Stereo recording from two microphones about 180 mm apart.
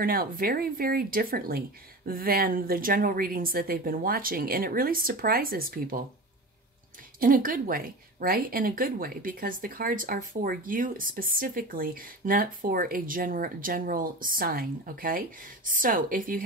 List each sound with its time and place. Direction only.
0.0 s speech: 55° right (ahead or behind)
7.2 s speech: 50° right (ahead or behind)